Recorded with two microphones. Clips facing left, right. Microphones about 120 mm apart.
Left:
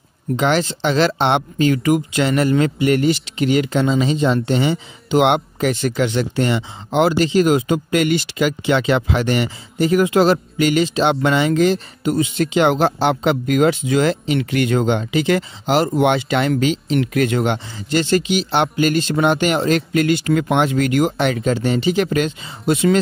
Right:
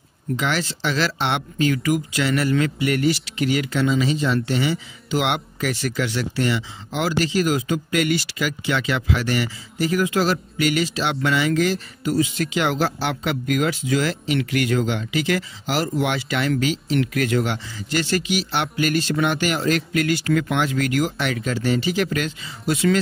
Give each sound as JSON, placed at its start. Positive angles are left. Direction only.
{"t": 0.4, "sound": "speech", "side_deg": 25}